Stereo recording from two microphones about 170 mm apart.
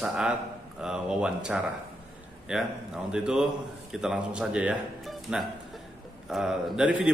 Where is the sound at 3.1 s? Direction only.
5° right (ahead or behind).